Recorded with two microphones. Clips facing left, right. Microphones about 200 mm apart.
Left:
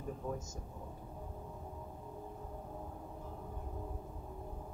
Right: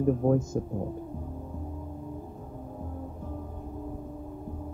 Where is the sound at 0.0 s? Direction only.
60° right (ahead or behind).